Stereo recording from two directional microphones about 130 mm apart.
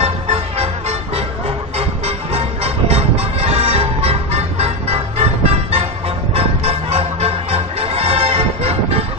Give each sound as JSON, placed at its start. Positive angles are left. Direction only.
{"t": 0.0, "sound": "music", "side_deg": -50}